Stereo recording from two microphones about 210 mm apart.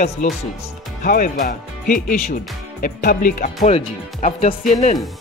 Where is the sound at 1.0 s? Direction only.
40° left (ahead or behind).